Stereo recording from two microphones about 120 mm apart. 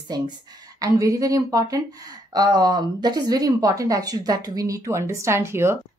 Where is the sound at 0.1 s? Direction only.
35° right (ahead or behind).